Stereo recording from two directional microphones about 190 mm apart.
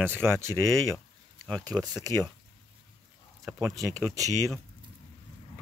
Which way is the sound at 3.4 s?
15° right (ahead or behind).